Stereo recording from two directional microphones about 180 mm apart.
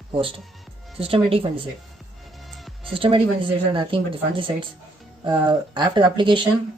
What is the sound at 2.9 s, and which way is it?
Speech, 30° right (ahead or behind).